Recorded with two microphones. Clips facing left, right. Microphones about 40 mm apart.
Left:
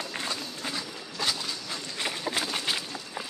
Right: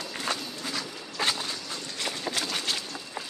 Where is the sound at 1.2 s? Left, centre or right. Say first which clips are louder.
Right 2 dB; right.